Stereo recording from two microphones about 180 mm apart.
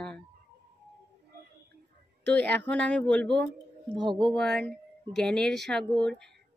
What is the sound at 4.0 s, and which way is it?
Speech, 25° right (ahead or behind).